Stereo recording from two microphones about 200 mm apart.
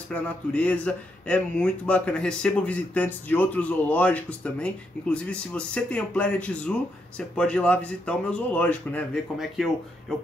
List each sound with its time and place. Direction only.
0.1 s speech: 5° left (ahead or behind)